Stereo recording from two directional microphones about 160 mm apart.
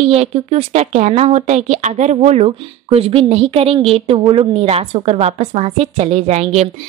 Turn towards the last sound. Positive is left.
turn(degrees=-40)  # may be behind; listen again after turning